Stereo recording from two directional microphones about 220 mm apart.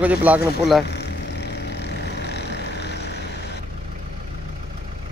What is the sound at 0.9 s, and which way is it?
Vehicle, 50° left (ahead or behind).